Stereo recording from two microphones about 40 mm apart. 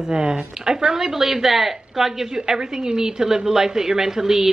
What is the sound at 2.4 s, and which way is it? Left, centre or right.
A woman's voice, centre.